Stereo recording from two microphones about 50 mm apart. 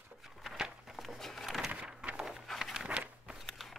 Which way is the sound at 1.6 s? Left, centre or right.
Right.